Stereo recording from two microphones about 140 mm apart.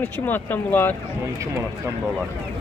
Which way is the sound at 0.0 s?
15° left (ahead or behind).